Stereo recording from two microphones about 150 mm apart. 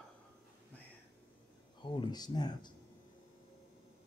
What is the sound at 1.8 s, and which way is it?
Speech, 30° left (ahead or behind).